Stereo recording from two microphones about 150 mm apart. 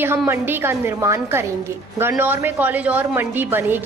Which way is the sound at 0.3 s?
15° right (ahead or behind).